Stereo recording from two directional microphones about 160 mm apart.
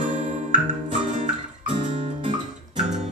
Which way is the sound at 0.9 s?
50° right (ahead or behind).